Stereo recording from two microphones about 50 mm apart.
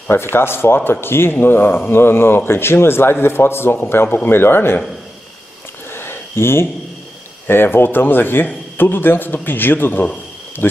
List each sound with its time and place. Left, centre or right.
0.1 s speech: left
5.9 s a sound: left
7.4 s speech: left